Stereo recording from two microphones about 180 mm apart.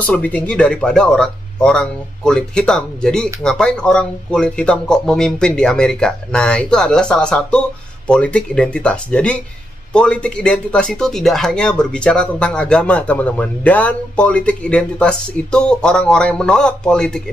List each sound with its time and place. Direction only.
0.0 s speech: 10° left (ahead or behind)